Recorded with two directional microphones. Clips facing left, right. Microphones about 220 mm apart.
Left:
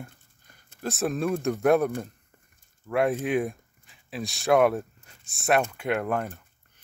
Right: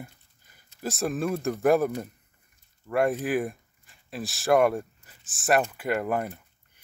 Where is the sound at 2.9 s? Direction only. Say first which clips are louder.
Even; centre (ahead or behind).